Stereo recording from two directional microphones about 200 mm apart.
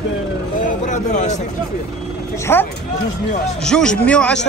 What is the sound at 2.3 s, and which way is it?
A man's voice, 10° left (ahead or behind).